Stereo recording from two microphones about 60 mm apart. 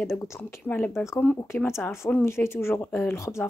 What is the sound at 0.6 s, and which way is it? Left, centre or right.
Speech, left.